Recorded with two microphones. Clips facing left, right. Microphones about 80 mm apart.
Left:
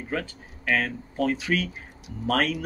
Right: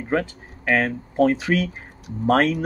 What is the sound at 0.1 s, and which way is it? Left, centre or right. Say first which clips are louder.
Speech: right 8 dB; right.